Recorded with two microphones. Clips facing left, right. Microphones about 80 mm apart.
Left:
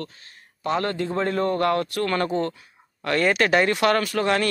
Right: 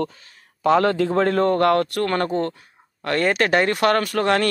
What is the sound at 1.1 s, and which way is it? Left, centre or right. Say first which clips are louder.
Speech: right 5 dB; right.